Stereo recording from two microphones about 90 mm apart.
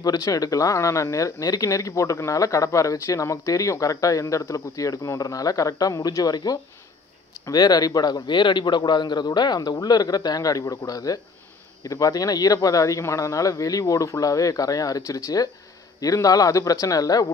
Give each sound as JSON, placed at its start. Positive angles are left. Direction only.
{"t": 0.0, "sound": "a man's voice", "side_deg": 45}